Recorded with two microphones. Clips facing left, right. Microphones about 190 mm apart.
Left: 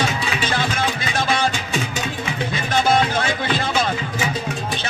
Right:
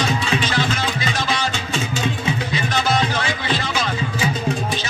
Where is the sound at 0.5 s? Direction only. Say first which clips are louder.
Even; 55° left (ahead or behind).